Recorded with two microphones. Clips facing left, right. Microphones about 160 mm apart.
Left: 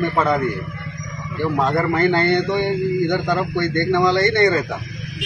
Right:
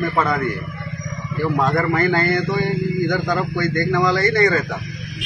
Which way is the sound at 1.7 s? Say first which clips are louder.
Left 3 dB; 25° left (ahead or behind).